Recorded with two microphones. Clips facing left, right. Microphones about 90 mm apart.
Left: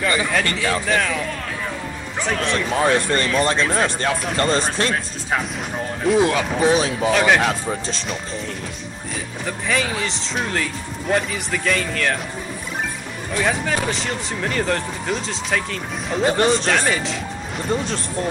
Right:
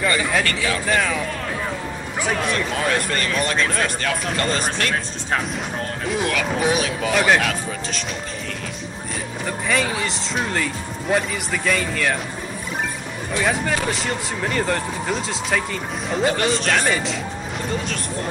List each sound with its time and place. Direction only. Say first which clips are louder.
0.6 s speech: left 1 dB; centre (ahead or behind)
2.7 s speech: left 4 dB; 30° left (ahead or behind)
6.1 s speech: left 4 dB; 25° left (ahead or behind)
7.1 s speech: left 1 dB; centre (ahead or behind)
7.3 s speech: left 2 dB; 30° left (ahead or behind)
9.7 s speech: even; centre (ahead or behind)
13.3 s speech: even; centre (ahead or behind)
16.3 s speech: left 3 dB; 35° left (ahead or behind)
16.7 s speech: even; centre (ahead or behind)